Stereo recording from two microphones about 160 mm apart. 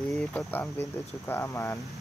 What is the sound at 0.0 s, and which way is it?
Speech, 5° left (ahead or behind).